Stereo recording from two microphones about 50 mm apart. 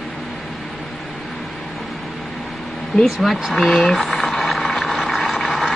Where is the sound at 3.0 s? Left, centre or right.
Centre.